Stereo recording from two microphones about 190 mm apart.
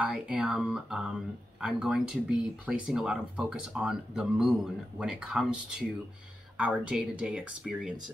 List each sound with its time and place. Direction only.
0.0 s speech: 5° right (ahead or behind)